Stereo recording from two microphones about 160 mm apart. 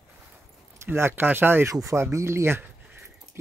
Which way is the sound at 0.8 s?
15° right (ahead or behind).